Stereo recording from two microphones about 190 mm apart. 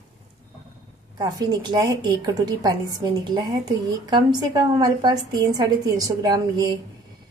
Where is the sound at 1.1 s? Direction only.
20° right (ahead or behind).